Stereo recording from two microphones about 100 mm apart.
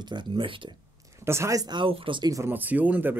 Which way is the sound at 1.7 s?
60° right (ahead or behind).